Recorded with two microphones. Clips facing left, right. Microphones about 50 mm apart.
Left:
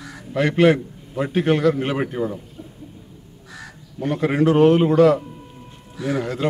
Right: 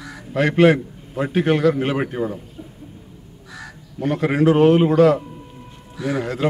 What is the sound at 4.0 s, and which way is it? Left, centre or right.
A man's voice, centre.